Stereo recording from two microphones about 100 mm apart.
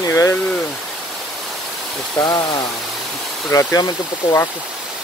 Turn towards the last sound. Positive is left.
turn(degrees=35)  # may be behind; listen again after turning